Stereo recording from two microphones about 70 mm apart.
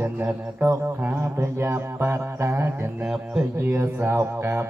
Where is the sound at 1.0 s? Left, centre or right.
Right.